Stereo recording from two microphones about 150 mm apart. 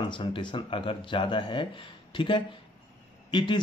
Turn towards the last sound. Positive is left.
turn(degrees=30)  # may be behind; listen again after turning